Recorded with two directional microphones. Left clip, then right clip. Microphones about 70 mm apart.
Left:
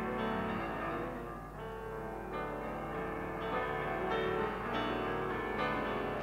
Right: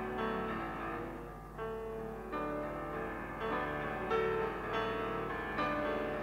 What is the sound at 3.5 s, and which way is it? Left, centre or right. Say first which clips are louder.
Music: left 1 dB; right.